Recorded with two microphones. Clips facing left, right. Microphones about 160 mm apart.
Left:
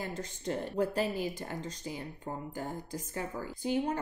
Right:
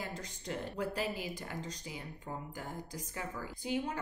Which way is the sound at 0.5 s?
35° left (ahead or behind).